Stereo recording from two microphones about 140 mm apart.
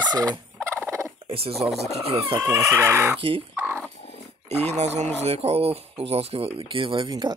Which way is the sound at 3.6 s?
15° right (ahead or behind).